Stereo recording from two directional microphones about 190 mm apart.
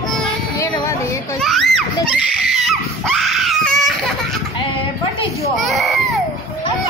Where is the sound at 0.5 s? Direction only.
15° left (ahead or behind).